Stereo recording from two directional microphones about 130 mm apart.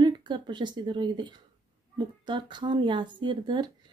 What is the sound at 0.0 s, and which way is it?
Speech, 35° right (ahead or behind).